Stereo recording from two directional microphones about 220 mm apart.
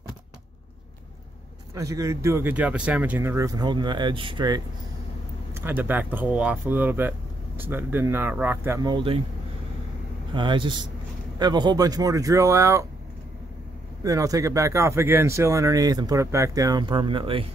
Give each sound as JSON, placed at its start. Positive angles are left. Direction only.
{"t": 1.7, "sound": "speech", "side_deg": -15}
{"t": 5.5, "sound": "speech", "side_deg": -10}
{"t": 10.3, "sound": "speech", "side_deg": -20}
{"t": 14.0, "sound": "speech", "side_deg": -15}